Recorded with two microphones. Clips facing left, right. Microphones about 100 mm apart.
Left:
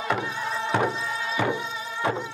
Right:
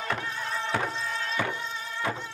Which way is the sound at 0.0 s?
10° left (ahead or behind).